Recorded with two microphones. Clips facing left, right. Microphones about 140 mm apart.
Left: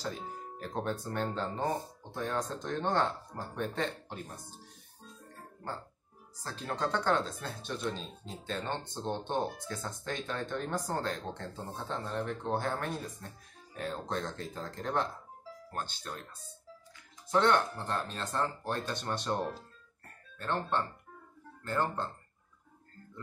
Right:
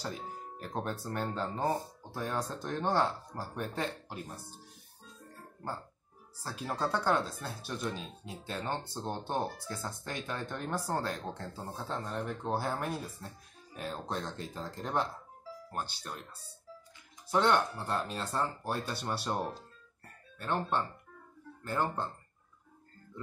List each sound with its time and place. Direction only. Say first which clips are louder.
0.6 s speech: left 2 dB; 5° right (ahead or behind)
6.4 s speech: even; 10° right (ahead or behind)
17.3 s speech: left 1 dB; 10° right (ahead or behind)